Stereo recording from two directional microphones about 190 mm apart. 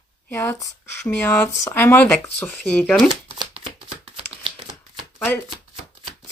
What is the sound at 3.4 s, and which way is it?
Shuffling cards, 30° right (ahead or behind).